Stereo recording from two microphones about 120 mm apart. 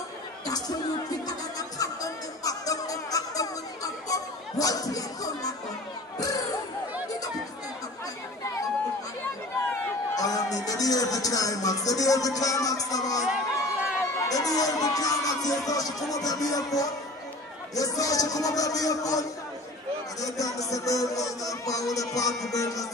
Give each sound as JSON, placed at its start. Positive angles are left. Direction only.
{"t": 0.5, "sound": "speech", "side_deg": 30}
{"t": 1.2, "sound": "music", "side_deg": 30}
{"t": 6.1, "sound": "a sound", "side_deg": 30}
{"t": 10.1, "sound": "music", "side_deg": 30}
{"t": 13.2, "sound": "a sound", "side_deg": -5}
{"t": 14.3, "sound": "music", "side_deg": 30}
{"t": 15.6, "sound": "speech", "side_deg": 30}
{"t": 16.1, "sound": "music", "side_deg": 30}
{"t": 17.7, "sound": "speech", "side_deg": 30}
{"t": 20.2, "sound": "music", "side_deg": 30}